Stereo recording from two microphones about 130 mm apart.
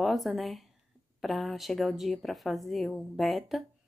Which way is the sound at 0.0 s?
Centre (ahead or behind).